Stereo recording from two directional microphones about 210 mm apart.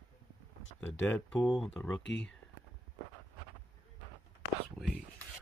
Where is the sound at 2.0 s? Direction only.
55° left (ahead or behind).